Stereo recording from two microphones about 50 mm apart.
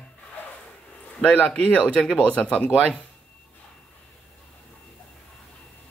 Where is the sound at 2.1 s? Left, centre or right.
Left.